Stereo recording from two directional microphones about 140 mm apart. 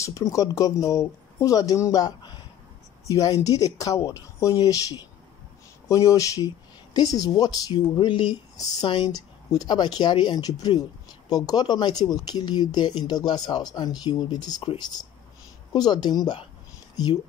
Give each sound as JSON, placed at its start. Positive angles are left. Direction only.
{"t": 0.0, "sound": "speech", "side_deg": 20}
{"t": 15.7, "sound": "speech", "side_deg": 30}